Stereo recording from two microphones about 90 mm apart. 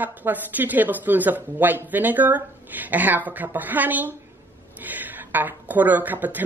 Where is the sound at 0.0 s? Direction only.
20° right (ahead or behind).